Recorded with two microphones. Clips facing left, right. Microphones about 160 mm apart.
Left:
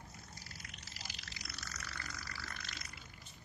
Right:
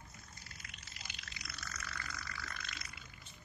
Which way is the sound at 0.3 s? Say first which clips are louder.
Left 3 dB; 35° left (ahead or behind).